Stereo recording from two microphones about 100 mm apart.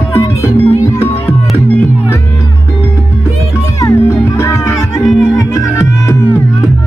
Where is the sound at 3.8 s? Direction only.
30° left (ahead or behind).